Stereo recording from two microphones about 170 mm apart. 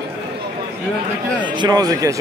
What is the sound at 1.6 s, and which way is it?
Speech, 25° right (ahead or behind).